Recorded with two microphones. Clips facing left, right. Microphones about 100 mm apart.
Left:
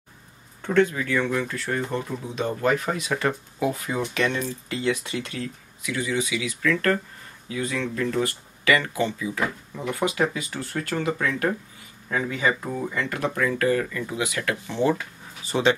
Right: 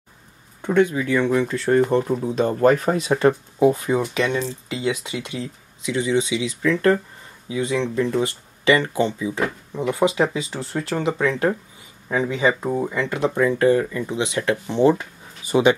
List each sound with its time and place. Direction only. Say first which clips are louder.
0.6 s speech: right 3 dB; 15° right (ahead or behind)
1.9 s speech: right 9 dB; 40° right (ahead or behind)
15.4 s speech: right 5 dB; 15° right (ahead or behind)